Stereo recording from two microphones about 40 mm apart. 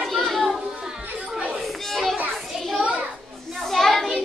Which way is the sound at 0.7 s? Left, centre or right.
Centre.